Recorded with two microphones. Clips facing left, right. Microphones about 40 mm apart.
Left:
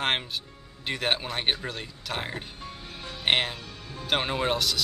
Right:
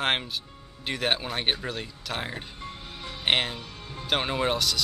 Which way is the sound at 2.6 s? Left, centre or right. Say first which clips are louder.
Right 1 dB; right.